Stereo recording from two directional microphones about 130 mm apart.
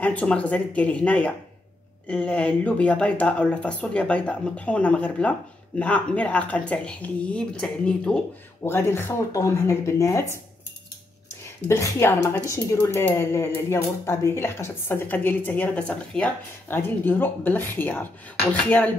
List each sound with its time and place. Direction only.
0.0 s a woman's voice: 10° left (ahead or behind)
8.6 s speech: 20° left (ahead or behind)
11.6 s a woman's voice: 20° left (ahead or behind)